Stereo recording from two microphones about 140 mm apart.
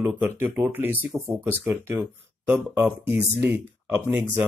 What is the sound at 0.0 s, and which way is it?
Speech, 15° right (ahead or behind).